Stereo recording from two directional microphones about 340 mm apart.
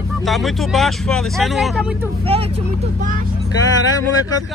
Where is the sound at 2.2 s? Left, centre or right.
Centre.